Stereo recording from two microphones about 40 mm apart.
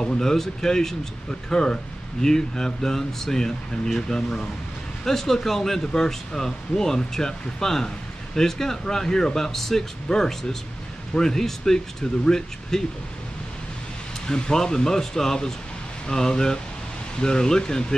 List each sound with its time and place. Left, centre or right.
0.0 s speech: centre
14.2 s speech: centre